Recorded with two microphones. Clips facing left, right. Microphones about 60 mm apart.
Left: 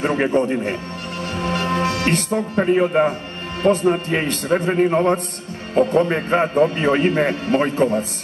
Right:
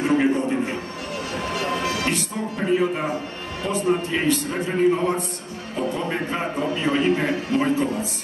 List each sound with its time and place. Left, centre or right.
0.0 s a man's voice: left